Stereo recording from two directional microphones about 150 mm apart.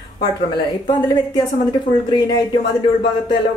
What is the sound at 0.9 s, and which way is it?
Speech, 25° left (ahead or behind).